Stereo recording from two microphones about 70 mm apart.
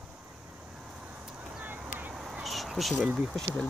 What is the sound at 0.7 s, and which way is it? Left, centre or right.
Vehicle, centre.